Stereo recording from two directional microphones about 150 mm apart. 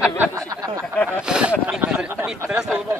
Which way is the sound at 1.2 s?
5° right (ahead or behind).